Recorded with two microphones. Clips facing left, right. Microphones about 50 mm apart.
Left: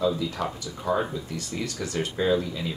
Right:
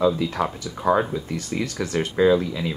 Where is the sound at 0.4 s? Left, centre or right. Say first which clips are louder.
Right 5 dB; right.